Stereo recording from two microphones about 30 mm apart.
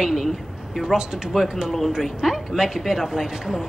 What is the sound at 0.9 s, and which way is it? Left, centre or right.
Speech, right.